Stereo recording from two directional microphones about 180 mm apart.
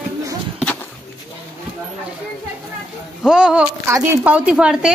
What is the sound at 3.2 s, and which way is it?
Speech, 5° right (ahead or behind).